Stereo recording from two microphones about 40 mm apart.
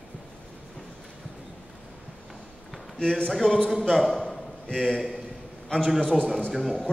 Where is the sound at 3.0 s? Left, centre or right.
Centre.